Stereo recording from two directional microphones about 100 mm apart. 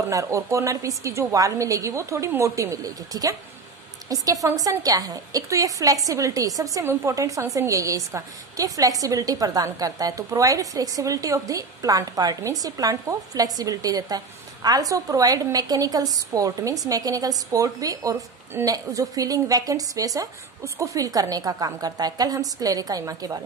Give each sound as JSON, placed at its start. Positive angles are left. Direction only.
{"t": 0.1, "sound": "a woman's voice", "side_deg": -30}